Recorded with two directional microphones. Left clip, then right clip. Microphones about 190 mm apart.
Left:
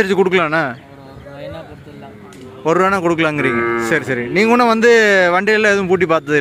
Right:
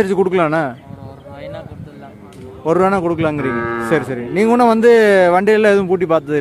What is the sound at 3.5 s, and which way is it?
Speech, 50° left (ahead or behind).